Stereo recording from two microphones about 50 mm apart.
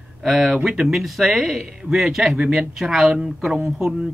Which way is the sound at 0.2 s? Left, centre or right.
Centre.